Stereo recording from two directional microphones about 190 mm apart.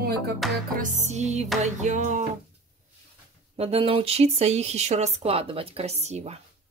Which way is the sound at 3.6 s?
30° right (ahead or behind).